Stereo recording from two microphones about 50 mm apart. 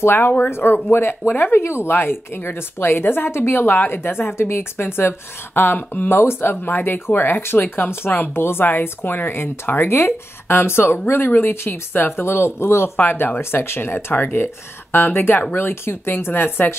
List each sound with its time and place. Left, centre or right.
0.0 s speech: left
6.0 s speech: left
12.9 s speech: left